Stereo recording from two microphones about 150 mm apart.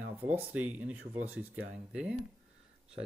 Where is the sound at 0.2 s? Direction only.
10° right (ahead or behind).